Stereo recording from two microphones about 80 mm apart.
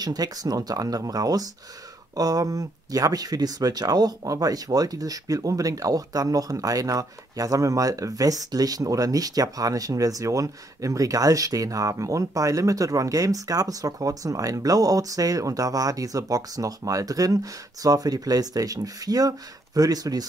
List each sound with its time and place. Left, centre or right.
0.0 s speech: right